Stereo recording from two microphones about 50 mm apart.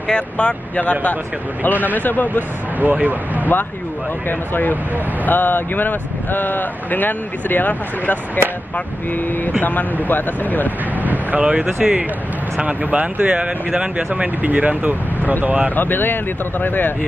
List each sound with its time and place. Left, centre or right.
0.1 s speech: left
2.8 s speech: right
4.3 s speech: left
9.6 s speech: left
11.0 s speech: right
11.4 s speech: right
15.7 s speech: left